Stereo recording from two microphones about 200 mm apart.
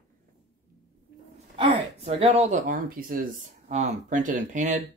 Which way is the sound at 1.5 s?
25° right (ahead or behind).